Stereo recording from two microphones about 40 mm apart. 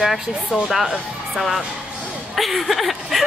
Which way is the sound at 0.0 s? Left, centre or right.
Centre.